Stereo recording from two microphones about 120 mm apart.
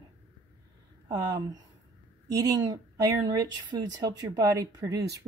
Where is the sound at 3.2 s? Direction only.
35° right (ahead or behind).